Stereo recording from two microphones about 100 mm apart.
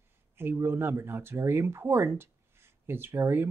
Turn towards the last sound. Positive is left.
turn(degrees=-25)  # may be behind; listen again after turning